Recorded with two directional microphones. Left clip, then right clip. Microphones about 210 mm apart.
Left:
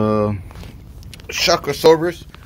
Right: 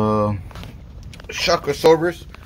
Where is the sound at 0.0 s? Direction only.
5° right (ahead or behind).